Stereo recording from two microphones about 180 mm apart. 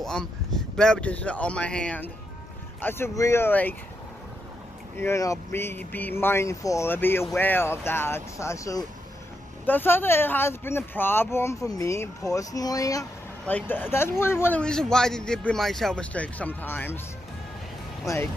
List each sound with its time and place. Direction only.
0.0 s a man's voice: centre (ahead or behind)
4.9 s a man's voice: 15° left (ahead or behind)
18.0 s a man's voice: 15° left (ahead or behind)